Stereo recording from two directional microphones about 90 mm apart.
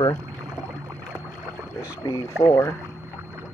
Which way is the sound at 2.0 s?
35° left (ahead or behind).